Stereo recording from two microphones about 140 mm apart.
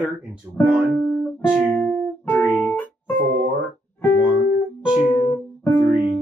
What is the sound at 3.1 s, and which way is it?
Music, 85° right.